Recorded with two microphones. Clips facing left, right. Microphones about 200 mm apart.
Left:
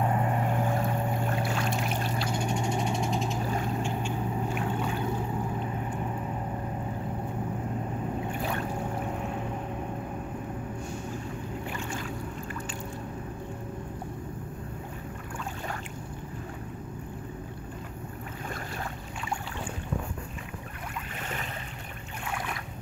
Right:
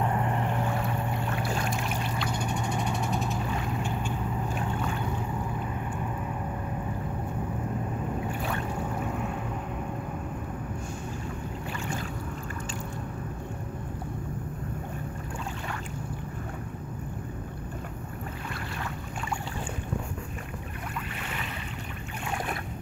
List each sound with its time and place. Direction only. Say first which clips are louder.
0.0 s boat: left 1 dB; 20° left (ahead or behind)
1.3 s boat: left 1 dB; 30° left (ahead or behind)
2.6 s vehicle: left 1 dB; 20° left (ahead or behind)